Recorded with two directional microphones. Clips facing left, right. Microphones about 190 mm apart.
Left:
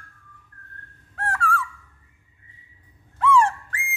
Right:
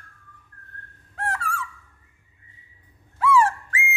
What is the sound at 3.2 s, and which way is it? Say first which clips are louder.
Whistling: even; 5° right (ahead or behind).